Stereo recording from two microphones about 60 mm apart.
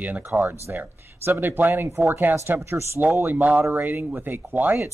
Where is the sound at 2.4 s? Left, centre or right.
Right.